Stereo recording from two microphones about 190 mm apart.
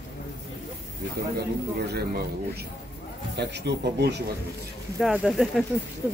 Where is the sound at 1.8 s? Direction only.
55° right (ahead or behind).